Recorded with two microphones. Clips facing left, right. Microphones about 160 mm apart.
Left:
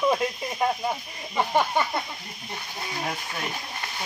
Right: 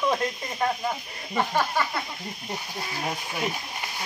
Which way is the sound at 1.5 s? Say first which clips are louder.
Left 5 dB; 20° left (ahead or behind).